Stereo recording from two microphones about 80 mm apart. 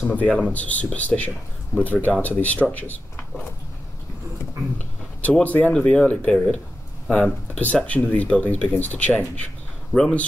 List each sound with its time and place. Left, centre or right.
0.1 s speech: centre
5.3 s speech: centre